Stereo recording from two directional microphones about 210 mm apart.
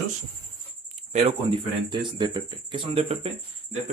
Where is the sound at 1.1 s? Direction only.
30° right (ahead or behind).